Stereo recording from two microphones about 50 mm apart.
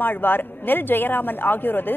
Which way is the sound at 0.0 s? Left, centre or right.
Left.